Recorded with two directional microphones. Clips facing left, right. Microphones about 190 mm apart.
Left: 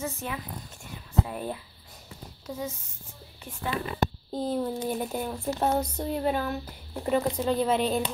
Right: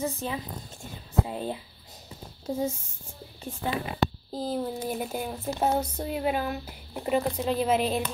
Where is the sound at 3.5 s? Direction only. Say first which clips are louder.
Right 6 dB; 25° right (ahead or behind).